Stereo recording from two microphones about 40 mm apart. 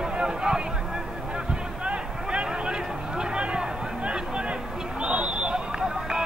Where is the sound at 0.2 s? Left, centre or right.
Centre.